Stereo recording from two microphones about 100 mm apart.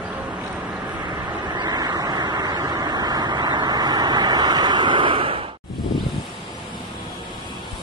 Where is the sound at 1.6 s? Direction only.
40° right (ahead or behind); by 5.4 s 60° right (ahead or behind).